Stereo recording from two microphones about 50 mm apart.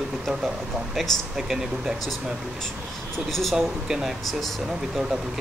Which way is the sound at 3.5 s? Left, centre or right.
Centre.